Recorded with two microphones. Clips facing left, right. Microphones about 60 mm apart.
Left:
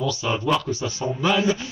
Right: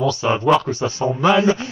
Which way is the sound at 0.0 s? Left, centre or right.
Right.